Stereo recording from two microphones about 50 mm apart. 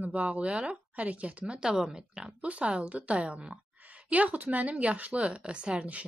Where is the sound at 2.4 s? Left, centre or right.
Right.